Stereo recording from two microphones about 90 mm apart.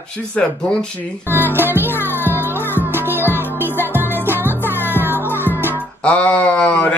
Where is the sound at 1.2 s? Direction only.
20° right (ahead or behind).